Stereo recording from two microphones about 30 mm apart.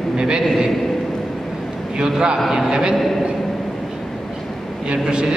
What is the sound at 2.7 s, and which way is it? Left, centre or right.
Speech, right.